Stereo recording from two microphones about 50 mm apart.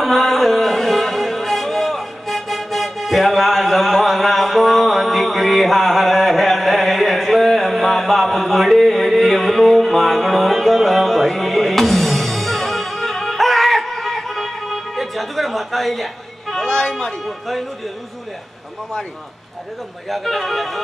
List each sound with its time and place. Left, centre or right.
0.0 s music: centre
16.6 s a sound: centre
17.0 s speech: centre
20.1 s speech: centre